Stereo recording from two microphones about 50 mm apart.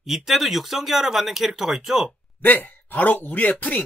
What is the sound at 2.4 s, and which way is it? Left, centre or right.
Speech, left.